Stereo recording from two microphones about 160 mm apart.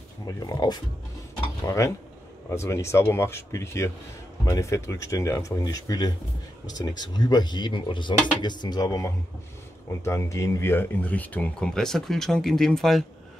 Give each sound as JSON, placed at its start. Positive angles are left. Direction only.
{"t": 0.5, "sound": "speech", "side_deg": 25}